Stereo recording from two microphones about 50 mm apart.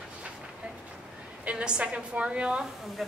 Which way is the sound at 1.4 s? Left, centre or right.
Centre.